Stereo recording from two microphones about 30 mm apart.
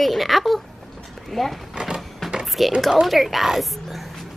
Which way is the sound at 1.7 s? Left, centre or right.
Right.